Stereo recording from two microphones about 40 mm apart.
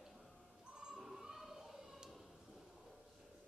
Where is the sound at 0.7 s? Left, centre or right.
Right.